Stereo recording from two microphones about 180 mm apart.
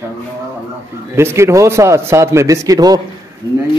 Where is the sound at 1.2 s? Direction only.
15° right (ahead or behind).